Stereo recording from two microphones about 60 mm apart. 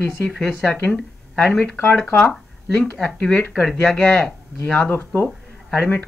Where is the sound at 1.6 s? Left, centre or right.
Left.